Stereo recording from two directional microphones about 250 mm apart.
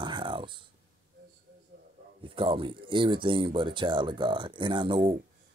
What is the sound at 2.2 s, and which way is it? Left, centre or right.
Speech, right.